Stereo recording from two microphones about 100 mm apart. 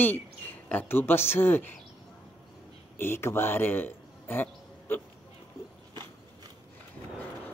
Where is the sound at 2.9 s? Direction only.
25° left (ahead or behind).